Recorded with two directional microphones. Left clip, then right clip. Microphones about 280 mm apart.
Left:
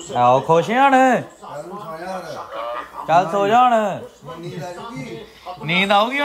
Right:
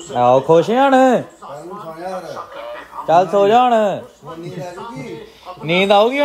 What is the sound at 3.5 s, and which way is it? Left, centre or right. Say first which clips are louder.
Speech: right 2 dB; left.